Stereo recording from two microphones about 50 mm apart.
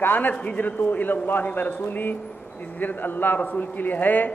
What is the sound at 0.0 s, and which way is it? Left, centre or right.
A man's voice, left.